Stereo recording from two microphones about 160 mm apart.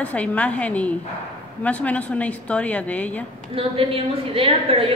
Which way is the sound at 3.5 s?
35° right (ahead or behind).